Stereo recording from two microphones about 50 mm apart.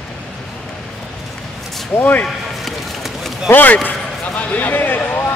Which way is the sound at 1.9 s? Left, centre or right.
Left.